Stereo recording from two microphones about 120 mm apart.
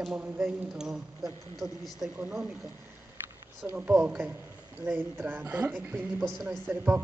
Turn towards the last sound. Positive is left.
turn(degrees=-20)  # may be behind; listen again after turning